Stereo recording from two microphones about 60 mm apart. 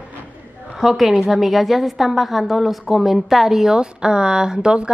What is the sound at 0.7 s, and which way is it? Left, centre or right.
A woman's voice, centre.